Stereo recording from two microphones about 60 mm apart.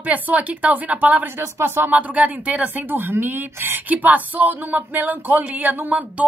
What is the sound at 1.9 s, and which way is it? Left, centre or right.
A woman's voice, right.